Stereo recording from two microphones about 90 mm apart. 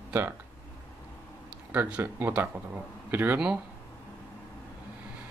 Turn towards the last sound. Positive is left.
turn(degrees=-20)  # may be behind; listen again after turning